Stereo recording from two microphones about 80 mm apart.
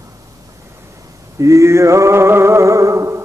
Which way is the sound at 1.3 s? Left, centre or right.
Right.